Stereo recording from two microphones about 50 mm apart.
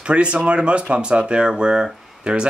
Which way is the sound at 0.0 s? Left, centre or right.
Right.